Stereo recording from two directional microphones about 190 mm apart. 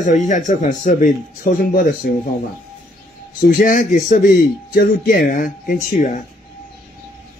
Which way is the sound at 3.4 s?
45° left (ahead or behind).